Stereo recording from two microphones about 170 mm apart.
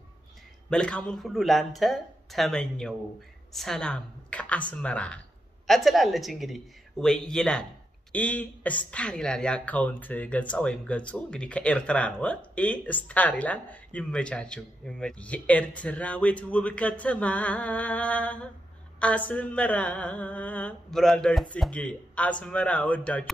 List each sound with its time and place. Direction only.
0.7 s speech: 5° left (ahead or behind)